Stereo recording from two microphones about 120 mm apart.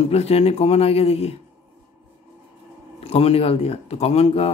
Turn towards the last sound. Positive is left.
turn(degrees=55)  # may be behind; listen again after turning